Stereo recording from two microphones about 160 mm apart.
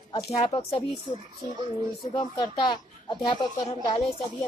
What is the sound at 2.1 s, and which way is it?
Speech, 30° left (ahead or behind).